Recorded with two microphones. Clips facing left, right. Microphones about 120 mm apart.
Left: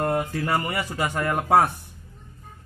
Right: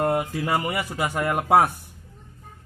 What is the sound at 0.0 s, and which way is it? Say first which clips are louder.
Speech: right 1 dB; 15° right (ahead or behind).